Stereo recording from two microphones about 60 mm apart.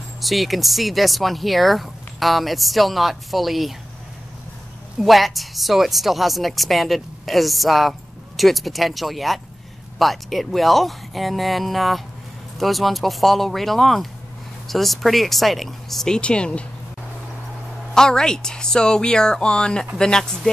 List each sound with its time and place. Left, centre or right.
0.2 s speech: centre
5.0 s speech: centre
16.2 s speech: centre
17.9 s speech: centre